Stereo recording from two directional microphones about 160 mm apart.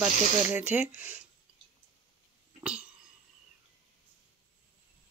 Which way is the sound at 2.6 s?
5° right (ahead or behind).